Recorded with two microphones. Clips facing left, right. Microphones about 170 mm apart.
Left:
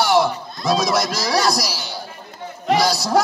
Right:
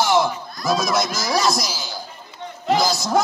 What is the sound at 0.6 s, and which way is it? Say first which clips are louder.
Speech: left 2 dB; 25° left (ahead or behind).